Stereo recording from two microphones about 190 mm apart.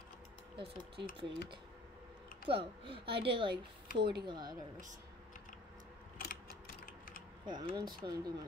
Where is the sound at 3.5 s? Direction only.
55° right (ahead or behind).